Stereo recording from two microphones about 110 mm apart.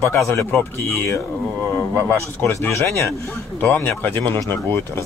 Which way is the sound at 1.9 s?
20° left (ahead or behind).